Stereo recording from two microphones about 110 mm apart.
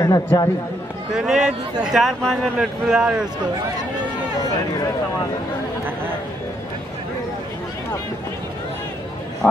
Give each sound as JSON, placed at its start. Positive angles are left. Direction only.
{"t": 0.0, "sound": "speech", "side_deg": 30}
{"t": 1.1, "sound": "speech", "side_deg": -5}
{"t": 9.4, "sound": "speech", "side_deg": 10}